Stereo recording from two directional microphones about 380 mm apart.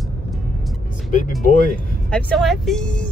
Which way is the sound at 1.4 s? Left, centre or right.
Centre.